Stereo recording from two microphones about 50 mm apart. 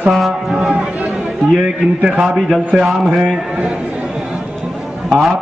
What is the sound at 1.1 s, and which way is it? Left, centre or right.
Chatter, centre.